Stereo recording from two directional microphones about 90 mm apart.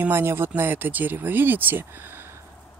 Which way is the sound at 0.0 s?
25° right (ahead or behind).